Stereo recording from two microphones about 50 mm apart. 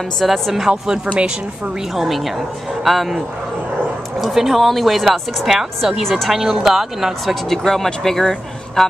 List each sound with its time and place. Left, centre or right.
0.2 s speech: centre
1.0 s a woman's voice: right
2.0 s speech: centre
4.2 s speech: centre
7.4 s speech: centre